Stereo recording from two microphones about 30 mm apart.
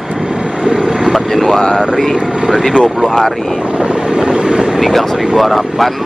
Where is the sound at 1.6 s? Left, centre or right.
Left.